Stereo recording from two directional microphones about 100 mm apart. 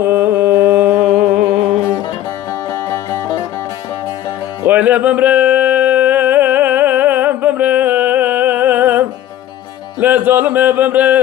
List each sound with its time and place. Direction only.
0.0 s music: 20° right (ahead or behind)
4.6 s a sound: 15° right (ahead or behind)
9.9 s music: 15° right (ahead or behind)